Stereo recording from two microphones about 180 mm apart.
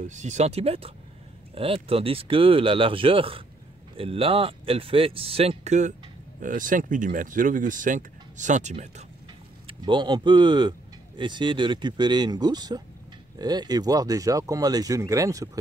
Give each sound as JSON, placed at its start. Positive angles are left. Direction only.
{"t": 0.0, "sound": "speech", "side_deg": -40}
{"t": 9.7, "sound": "speech", "side_deg": -25}